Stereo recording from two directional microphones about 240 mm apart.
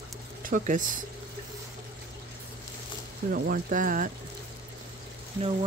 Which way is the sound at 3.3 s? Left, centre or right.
Right.